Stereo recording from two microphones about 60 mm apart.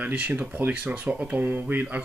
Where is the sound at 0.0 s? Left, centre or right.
Right.